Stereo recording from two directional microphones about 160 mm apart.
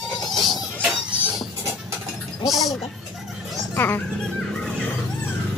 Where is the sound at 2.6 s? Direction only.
Centre (ahead or behind).